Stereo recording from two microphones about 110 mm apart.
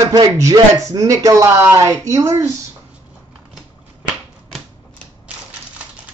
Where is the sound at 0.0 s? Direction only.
35° right (ahead or behind).